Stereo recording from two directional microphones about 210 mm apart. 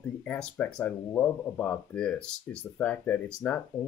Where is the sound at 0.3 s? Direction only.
5° left (ahead or behind).